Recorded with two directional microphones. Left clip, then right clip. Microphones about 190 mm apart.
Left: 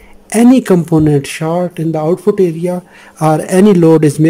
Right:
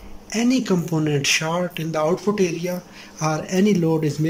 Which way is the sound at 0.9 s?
30° left (ahead or behind).